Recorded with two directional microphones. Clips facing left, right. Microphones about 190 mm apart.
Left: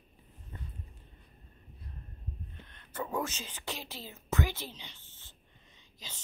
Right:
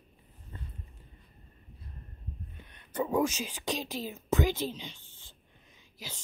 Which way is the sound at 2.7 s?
15° right (ahead or behind).